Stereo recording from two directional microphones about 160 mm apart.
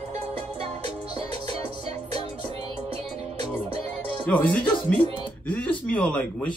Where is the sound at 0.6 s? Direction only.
40° right (ahead or behind).